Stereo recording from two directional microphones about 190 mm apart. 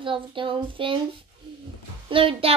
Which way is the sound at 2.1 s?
30° right (ahead or behind).